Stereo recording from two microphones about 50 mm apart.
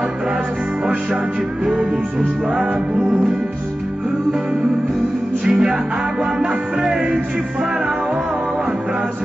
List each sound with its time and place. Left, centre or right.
1.8 s music: right
5.4 s music: centre